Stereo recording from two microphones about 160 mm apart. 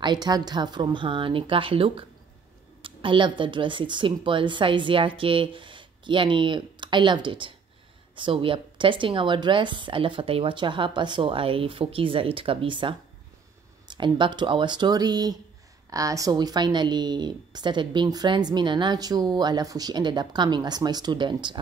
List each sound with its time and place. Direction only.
0.0 s a woman's voice: 25° right (ahead or behind)